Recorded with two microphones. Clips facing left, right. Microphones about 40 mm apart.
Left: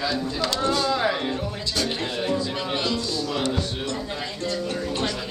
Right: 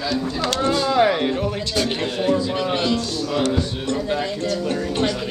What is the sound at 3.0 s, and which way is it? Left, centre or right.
Music, right.